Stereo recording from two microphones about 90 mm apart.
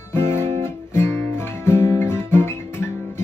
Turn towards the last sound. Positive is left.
turn(degrees=30)  # may be behind; listen again after turning